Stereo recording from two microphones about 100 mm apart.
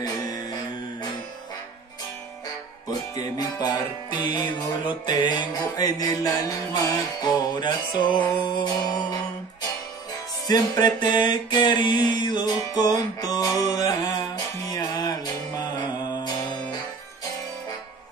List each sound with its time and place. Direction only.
0.0 s music: 40° left (ahead or behind)
3.2 s music: 40° left (ahead or behind)
10.5 s music: 45° left (ahead or behind)